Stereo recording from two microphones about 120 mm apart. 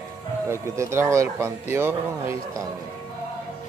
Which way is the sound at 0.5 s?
20° right (ahead or behind).